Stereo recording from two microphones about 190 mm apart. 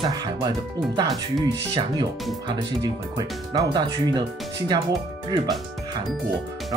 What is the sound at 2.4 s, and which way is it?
Speech, 20° right (ahead or behind).